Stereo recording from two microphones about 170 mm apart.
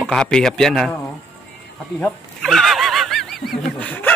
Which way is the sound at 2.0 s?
Centre (ahead or behind).